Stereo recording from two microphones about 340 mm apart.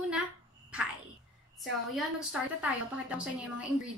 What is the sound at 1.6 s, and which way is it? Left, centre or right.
Speech, centre.